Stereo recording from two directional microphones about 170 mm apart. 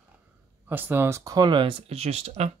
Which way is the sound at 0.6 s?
10° right (ahead or behind).